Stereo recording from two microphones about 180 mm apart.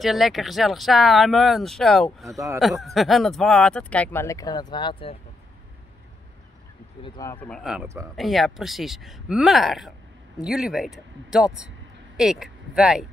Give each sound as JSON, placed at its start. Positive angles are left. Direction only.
{"t": 0.0, "sound": "speech", "side_deg": 0}
{"t": 2.2, "sound": "speech", "side_deg": -15}
{"t": 2.8, "sound": "speech", "side_deg": 0}
{"t": 7.0, "sound": "speech", "side_deg": 25}
{"t": 7.3, "sound": "speech", "side_deg": 5}